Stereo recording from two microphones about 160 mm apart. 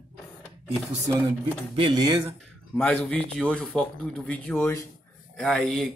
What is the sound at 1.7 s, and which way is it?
Speech, 35° right (ahead or behind).